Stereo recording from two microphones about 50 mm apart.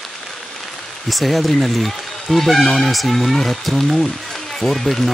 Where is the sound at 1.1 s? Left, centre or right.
Centre.